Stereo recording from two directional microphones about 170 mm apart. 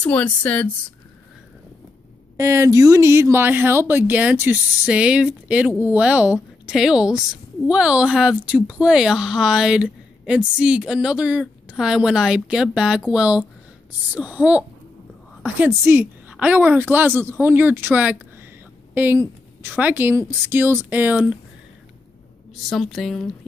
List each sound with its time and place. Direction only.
0.0 s speech: 10° left (ahead or behind)
2.3 s speech: 15° right (ahead or behind)
22.7 s speech: centre (ahead or behind)